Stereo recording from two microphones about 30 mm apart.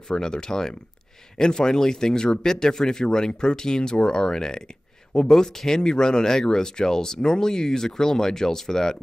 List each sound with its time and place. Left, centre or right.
0.1 s speech: left